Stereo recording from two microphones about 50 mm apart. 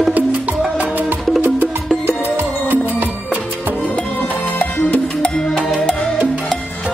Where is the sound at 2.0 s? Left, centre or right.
Right.